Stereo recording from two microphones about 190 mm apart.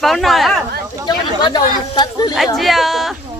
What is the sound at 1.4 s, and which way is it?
Speech, 25° left (ahead or behind).